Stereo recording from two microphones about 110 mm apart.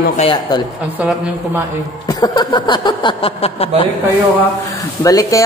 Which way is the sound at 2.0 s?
35° left (ahead or behind).